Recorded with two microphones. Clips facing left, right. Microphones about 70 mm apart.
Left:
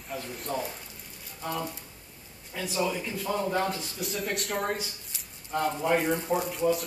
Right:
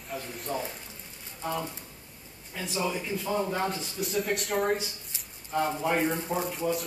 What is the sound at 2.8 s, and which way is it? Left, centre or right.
A man's voice, centre.